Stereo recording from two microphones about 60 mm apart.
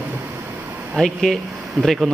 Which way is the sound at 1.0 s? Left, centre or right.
Centre.